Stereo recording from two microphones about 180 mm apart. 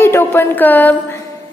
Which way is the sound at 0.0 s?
15° left (ahead or behind).